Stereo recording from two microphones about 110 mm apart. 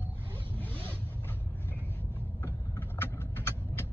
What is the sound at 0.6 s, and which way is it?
Zipper, 15° left (ahead or behind).